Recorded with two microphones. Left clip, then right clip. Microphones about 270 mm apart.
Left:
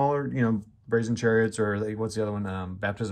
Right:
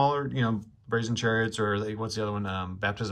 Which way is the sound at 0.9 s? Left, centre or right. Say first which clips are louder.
Left 3 dB; right.